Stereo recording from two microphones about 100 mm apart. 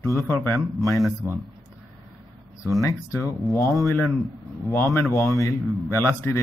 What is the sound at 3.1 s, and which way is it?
A man's voice, 30° left (ahead or behind).